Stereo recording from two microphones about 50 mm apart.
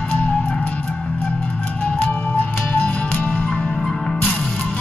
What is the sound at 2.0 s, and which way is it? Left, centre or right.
Music, left.